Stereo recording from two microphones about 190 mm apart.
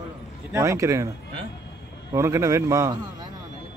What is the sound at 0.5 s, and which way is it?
Speech, 15° right (ahead or behind).